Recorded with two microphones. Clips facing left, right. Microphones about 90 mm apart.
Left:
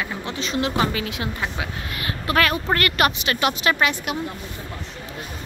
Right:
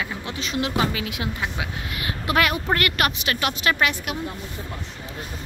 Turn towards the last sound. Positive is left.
turn(degrees=0)  # may be behind; listen again after turning